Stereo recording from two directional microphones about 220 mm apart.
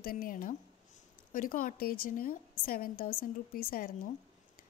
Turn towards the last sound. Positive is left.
turn(degrees=40)  # may be behind; listen again after turning